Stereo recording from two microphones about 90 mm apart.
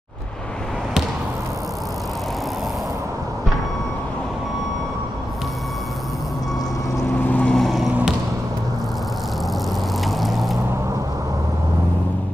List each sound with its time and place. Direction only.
7.2 s vehicle: 15° left (ahead or behind)
7.5 s vehicle: centre (ahead or behind)
10.0 s vehicle: centre (ahead or behind)